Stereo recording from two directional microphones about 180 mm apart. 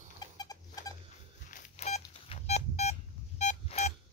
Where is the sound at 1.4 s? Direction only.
45° left (ahead or behind).